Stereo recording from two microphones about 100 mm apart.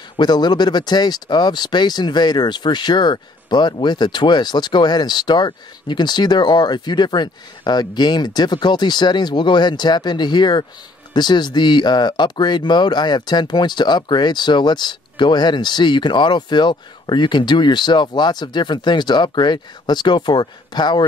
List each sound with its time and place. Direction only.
0.2 s speech: 45° left (ahead or behind)